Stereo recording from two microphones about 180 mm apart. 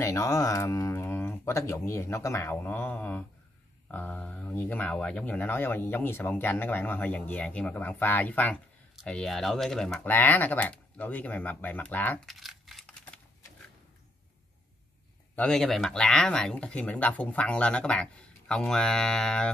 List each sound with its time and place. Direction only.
0.0 s speech: 15° left (ahead or behind)
15.3 s speech: 5° left (ahead or behind)